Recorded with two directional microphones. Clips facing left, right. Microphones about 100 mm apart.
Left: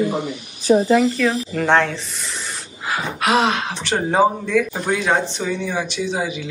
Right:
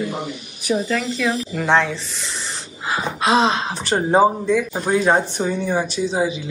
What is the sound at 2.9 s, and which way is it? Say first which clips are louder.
Speech: right 1 dB; 30° right (ahead or behind).